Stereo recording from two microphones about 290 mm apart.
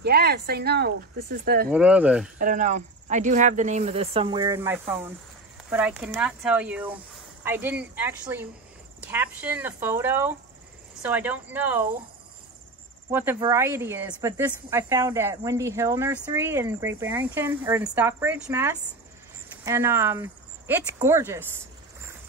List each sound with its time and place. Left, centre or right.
0.0 s speech: right
1.7 s speech: centre
2.3 s speech: right; by 11.9 s centre
13.1 s speech: centre